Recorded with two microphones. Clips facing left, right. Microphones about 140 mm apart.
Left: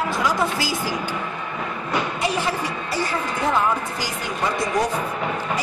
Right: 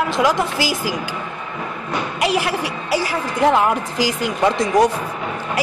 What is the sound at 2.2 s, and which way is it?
A woman's voice, 90° right.